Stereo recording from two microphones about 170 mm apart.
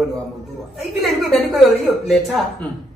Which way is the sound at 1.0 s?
Centre (ahead or behind).